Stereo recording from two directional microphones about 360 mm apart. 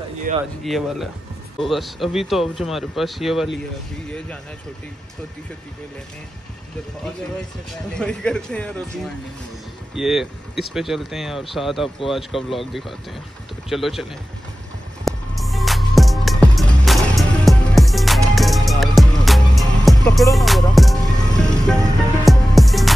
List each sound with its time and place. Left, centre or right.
0.3 s speech: right
0.7 s speech: centre
7.9 s speech: centre
15.0 s music: centre
22.2 s music: centre